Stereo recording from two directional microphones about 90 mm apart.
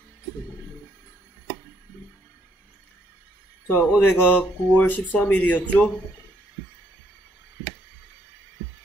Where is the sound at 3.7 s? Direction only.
20° left (ahead or behind).